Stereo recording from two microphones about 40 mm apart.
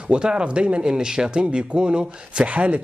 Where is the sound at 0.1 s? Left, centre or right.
Right.